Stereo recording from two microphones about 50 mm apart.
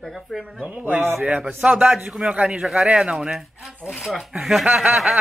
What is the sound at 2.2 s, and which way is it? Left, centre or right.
Snicker, centre.